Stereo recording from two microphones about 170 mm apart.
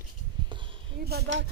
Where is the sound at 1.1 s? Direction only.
80° right.